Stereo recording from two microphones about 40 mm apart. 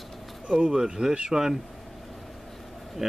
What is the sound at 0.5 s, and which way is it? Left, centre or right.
Speech, right.